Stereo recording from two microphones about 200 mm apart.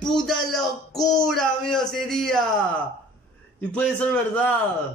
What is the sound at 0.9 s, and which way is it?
Child singing, 20° left (ahead or behind).